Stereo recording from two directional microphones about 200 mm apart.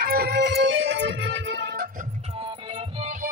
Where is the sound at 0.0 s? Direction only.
50° right (ahead or behind).